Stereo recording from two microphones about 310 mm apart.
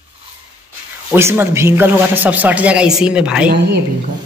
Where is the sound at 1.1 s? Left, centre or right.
Centre.